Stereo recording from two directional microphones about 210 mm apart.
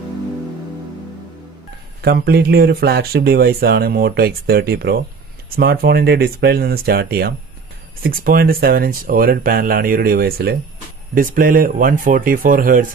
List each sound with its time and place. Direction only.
2.0 s speech: 45° right (ahead or behind)